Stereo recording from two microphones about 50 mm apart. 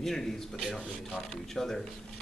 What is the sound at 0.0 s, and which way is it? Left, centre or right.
Speech, centre.